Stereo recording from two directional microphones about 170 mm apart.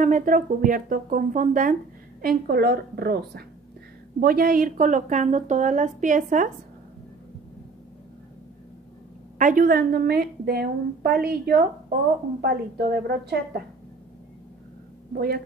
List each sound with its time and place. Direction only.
0.0 s a woman's voice: 50° right (ahead or behind)
2.2 s a woman's voice: 65° right (ahead or behind)
9.4 s a woman's voice: 50° right (ahead or behind); by 13.6 s 70° right (ahead or behind)
15.1 s a woman's voice: 60° right (ahead or behind)